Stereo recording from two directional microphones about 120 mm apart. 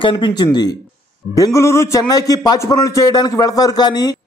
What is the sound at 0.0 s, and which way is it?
A man's voice, 45° left (ahead or behind).